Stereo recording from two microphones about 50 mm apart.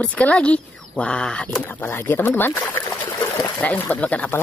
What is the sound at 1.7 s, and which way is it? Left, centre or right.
Speech, left.